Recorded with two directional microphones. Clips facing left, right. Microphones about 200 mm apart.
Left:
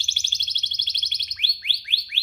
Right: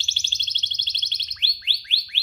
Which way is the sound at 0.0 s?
15° left (ahead or behind).